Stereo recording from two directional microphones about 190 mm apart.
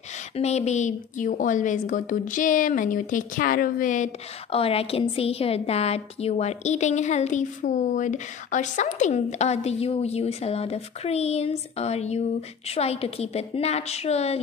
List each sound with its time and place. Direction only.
0.4 s a woman's voice: 35° left (ahead or behind)